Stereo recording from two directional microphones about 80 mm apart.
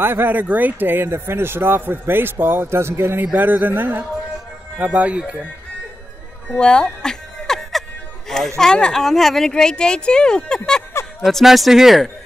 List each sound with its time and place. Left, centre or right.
0.0 s speech: right
6.5 s a sound: centre
8.5 s speech: centre